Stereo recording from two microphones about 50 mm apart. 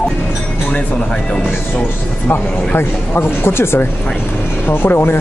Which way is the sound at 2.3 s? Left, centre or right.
Left.